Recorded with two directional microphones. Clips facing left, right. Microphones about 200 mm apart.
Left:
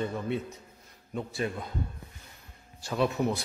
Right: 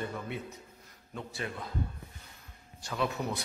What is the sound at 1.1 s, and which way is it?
Speech, 25° left (ahead or behind).